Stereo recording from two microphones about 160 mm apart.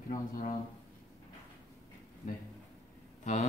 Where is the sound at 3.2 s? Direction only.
50° left (ahead or behind).